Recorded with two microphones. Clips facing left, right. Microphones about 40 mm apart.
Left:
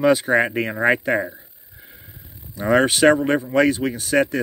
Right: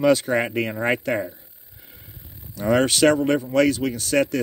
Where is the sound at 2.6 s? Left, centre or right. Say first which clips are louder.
Left 2 dB; left.